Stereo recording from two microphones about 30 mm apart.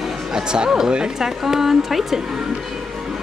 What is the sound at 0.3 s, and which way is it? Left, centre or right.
Music, right.